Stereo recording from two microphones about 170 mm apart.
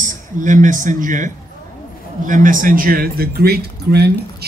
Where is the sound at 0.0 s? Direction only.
50° right (ahead or behind).